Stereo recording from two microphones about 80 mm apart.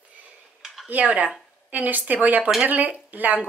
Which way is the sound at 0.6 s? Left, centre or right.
Centre.